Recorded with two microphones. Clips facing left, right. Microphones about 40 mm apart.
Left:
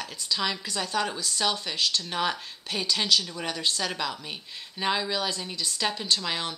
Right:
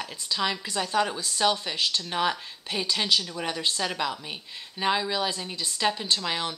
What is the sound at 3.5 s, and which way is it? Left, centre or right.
Speech, centre.